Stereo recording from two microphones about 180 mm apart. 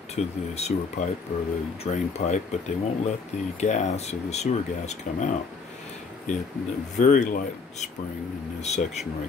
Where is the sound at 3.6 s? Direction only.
40° left (ahead or behind).